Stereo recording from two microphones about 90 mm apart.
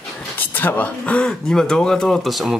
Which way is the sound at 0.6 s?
20° left (ahead or behind).